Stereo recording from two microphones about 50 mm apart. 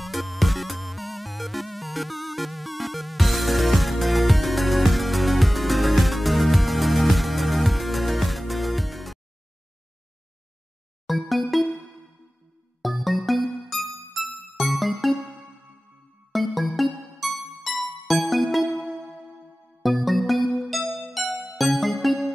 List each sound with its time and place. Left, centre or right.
0.0 s music: centre
11.1 s music: centre
12.8 s music: centre
16.3 s music: centre